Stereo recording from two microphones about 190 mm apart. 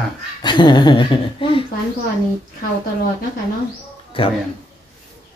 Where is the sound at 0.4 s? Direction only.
25° left (ahead or behind).